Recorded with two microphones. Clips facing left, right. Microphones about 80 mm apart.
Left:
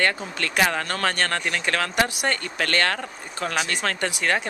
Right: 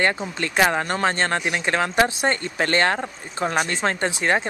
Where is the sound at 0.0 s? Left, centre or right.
Right.